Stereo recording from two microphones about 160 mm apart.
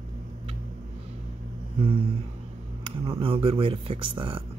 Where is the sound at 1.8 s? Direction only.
35° right (ahead or behind).